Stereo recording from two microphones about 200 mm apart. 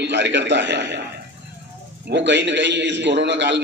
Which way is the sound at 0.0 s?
60° right (ahead or behind).